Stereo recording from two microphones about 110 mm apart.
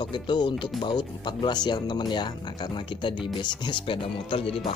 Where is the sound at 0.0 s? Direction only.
45° left (ahead or behind).